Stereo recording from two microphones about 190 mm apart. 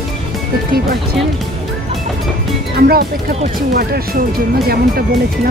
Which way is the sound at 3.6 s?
50° right (ahead or behind).